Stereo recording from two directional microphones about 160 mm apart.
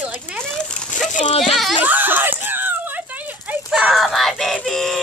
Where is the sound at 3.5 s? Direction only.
5° right (ahead or behind).